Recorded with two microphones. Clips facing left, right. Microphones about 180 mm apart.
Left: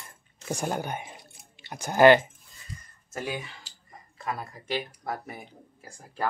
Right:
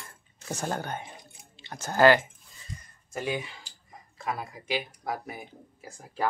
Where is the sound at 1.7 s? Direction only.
15° left (ahead or behind).